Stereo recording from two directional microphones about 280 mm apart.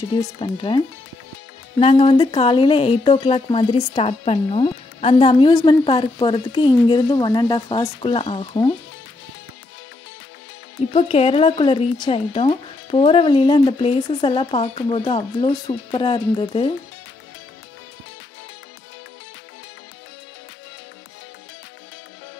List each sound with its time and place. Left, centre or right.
0.2 s speech: centre
10.9 s speech: left